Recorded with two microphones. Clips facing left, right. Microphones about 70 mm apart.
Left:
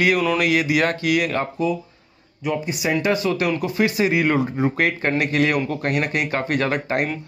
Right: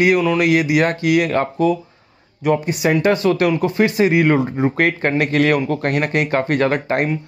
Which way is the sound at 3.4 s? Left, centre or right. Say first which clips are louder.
Right 4 dB; right.